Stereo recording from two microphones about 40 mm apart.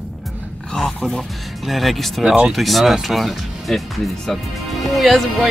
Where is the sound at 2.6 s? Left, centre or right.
Centre.